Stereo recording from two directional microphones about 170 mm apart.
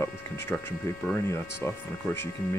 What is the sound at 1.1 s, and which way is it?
Speech, 15° left (ahead or behind).